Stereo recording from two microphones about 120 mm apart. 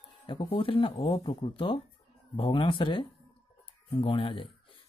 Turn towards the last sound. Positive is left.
turn(degrees=45)  # may be behind; listen again after turning